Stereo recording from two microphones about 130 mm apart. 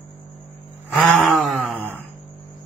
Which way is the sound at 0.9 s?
Centre (ahead or behind).